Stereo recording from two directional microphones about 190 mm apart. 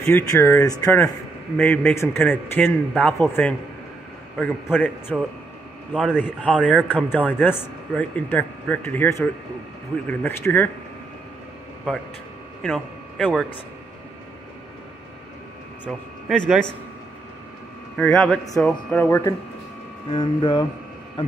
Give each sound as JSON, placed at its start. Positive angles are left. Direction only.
{"t": 0.0, "sound": "speech", "side_deg": 15}
{"t": 6.1, "sound": "speech", "side_deg": 10}
{"t": 12.6, "sound": "speech", "side_deg": 0}
{"t": 15.8, "sound": "speech", "side_deg": 5}
{"t": 17.9, "sound": "speech", "side_deg": 5}